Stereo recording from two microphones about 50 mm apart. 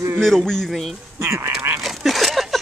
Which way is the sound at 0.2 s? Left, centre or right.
Centre.